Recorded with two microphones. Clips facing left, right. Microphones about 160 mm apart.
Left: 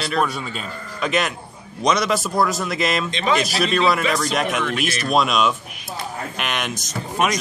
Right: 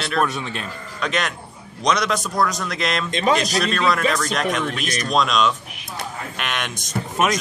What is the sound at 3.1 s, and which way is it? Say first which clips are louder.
Speech: right 2 dB; 45° right (ahead or behind).